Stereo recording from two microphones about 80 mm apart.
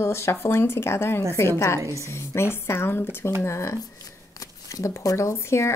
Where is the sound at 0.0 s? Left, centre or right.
Left.